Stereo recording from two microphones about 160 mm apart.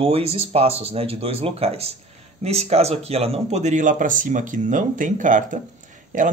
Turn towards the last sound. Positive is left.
turn(degrees=-55)  # may be behind; listen again after turning